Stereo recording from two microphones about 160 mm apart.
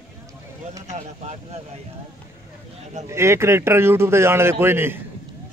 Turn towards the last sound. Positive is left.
turn(degrees=-15)  # may be behind; listen again after turning